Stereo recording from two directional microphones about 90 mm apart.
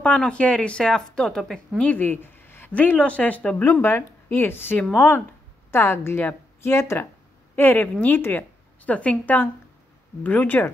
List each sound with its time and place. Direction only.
0.0 s speech: 15° left (ahead or behind)
1.8 s a woman's voice: 20° left (ahead or behind)